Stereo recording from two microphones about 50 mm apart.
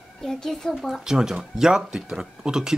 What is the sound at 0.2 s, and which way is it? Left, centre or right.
Speech, centre.